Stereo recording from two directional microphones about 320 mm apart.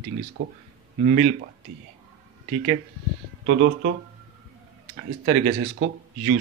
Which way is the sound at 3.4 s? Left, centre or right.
Right.